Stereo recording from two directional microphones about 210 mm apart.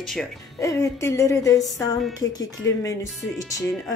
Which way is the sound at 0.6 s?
15° left (ahead or behind).